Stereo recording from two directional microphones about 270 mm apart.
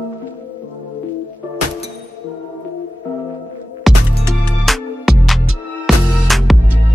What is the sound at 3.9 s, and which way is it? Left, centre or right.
Music, centre.